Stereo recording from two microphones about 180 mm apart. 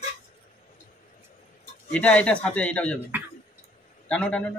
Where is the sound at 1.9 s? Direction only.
5° left (ahead or behind).